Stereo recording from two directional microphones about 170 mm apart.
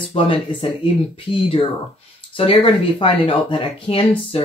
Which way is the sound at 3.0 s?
30° left (ahead or behind).